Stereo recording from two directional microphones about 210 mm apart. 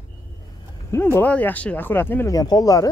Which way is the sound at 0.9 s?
10° left (ahead or behind).